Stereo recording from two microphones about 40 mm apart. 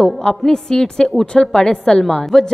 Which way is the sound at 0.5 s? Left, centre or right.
Centre.